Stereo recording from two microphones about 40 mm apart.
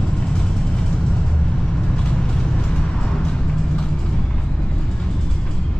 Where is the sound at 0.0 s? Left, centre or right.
Left.